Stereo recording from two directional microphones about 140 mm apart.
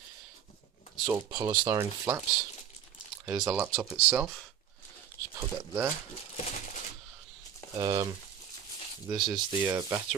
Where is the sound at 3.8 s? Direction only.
5° right (ahead or behind).